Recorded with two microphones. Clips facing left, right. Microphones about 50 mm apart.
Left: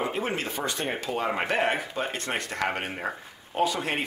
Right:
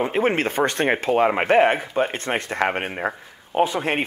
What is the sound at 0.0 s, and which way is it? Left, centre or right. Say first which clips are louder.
Speech: right 8 dB; right.